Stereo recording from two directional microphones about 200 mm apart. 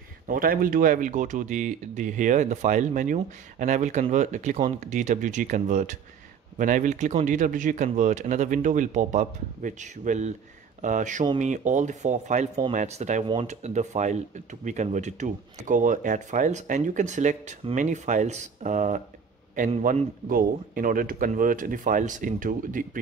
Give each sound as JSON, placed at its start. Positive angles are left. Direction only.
{"t": 0.3, "sound": "a man's voice", "side_deg": -45}